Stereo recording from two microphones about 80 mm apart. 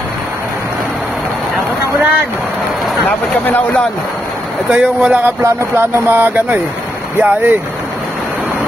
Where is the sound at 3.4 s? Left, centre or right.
Centre.